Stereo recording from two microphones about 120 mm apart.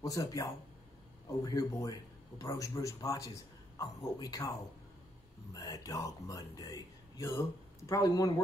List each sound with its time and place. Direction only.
0.0 s a man's voice: 30° left (ahead or behind)
5.5 s a man's voice: 30° left (ahead or behind)